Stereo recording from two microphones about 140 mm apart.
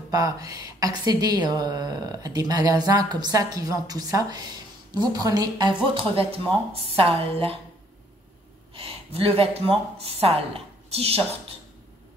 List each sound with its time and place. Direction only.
0.1 s a woman's voice: 25° right (ahead or behind); by 7.5 s 40° right (ahead or behind)
8.7 s speech: 40° right (ahead or behind)